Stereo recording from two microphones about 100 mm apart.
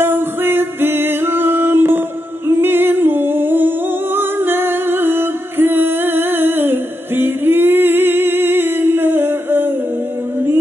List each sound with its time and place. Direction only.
0.0 s music: 20° right (ahead or behind)
2.4 s humming: 20° right (ahead or behind)